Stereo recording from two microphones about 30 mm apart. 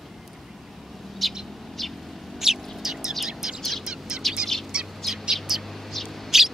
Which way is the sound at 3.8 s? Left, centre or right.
Right.